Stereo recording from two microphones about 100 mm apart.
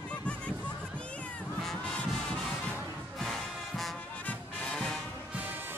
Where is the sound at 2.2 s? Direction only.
5° left (ahead or behind).